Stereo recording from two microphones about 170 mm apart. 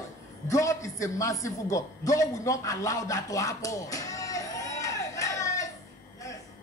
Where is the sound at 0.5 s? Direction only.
20° left (ahead or behind).